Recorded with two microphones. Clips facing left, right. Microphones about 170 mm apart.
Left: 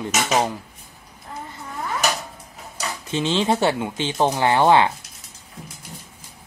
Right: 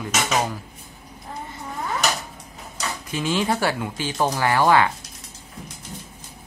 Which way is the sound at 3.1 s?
25° left (ahead or behind).